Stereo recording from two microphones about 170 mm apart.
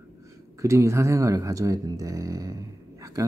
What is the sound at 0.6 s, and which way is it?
Speech, 15° right (ahead or behind).